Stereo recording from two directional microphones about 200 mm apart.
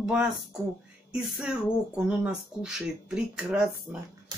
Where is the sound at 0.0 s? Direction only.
5° right (ahead or behind).